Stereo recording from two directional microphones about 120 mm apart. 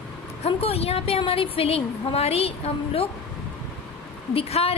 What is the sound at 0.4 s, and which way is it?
A woman's voice, 55° left (ahead or behind).